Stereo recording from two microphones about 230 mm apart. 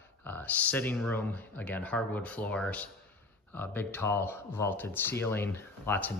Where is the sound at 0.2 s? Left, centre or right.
Centre.